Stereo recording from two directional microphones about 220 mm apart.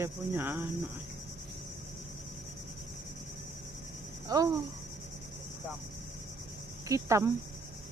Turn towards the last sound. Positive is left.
turn(degrees=-15)  # may be behind; listen again after turning